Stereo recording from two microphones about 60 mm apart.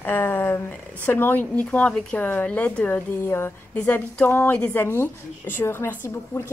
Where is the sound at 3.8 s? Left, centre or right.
Left.